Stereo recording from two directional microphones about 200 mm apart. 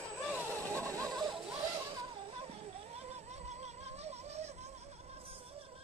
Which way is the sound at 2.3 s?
30° right (ahead or behind).